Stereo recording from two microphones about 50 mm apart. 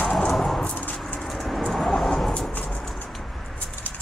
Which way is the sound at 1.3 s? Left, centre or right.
Centre.